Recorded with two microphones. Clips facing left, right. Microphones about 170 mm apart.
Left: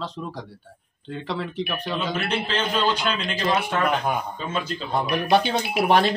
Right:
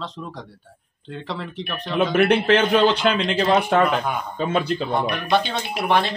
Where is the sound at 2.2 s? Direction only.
70° right (ahead or behind).